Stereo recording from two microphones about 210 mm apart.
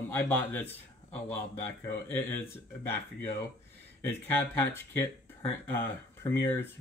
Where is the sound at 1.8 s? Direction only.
10° left (ahead or behind).